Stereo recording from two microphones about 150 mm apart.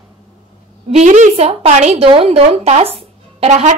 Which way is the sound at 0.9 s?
50° right (ahead or behind).